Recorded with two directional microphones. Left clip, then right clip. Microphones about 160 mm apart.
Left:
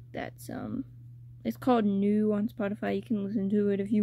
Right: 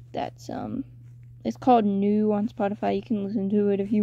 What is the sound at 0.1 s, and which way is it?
Speech, 15° left (ahead or behind).